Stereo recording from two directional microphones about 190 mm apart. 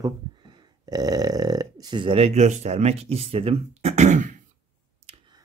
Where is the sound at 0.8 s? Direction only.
20° right (ahead or behind); by 4.4 s 40° right (ahead or behind).